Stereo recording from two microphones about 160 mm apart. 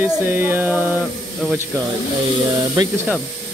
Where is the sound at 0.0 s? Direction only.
15° right (ahead or behind).